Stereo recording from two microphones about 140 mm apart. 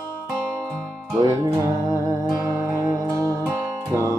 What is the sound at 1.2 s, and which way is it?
Speech, 20° right (ahead or behind).